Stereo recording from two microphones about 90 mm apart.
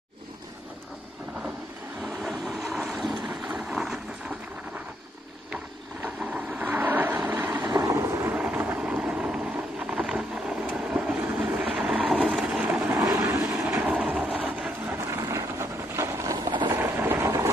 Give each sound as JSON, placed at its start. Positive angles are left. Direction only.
{"t": 2.2, "sound": "boat", "side_deg": 0}
{"t": 6.0, "sound": "vehicle", "side_deg": -15}
{"t": 7.6, "sound": "vehicle", "side_deg": -35}
{"t": 8.3, "sound": "vehicle", "side_deg": -15}
{"t": 12.6, "sound": "vehicle", "side_deg": -20}
{"t": 13.0, "sound": "vehicle", "side_deg": -30}
{"t": 13.7, "sound": "train", "side_deg": -15}
{"t": 15.0, "sound": "vehicle", "side_deg": -35}
{"t": 16.3, "sound": "a sound", "side_deg": -55}
{"t": 16.7, "sound": "a sound", "side_deg": -25}